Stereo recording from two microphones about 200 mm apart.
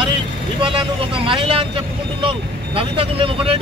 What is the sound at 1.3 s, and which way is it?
Speech, 25° right (ahead or behind).